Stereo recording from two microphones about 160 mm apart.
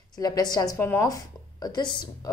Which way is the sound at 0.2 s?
25° left (ahead or behind).